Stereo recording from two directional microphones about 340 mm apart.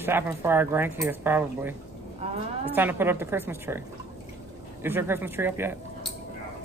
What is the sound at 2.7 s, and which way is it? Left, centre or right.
Speech, centre.